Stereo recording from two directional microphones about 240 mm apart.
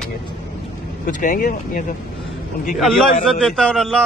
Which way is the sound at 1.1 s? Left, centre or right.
Left.